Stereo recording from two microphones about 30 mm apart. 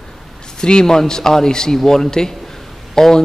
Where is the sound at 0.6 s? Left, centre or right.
Left.